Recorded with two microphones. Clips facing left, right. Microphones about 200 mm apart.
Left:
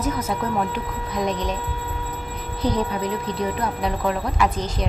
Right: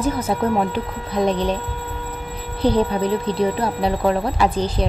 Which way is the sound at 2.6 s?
30° right (ahead or behind).